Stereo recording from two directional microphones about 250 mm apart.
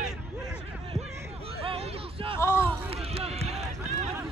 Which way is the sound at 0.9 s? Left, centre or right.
Right.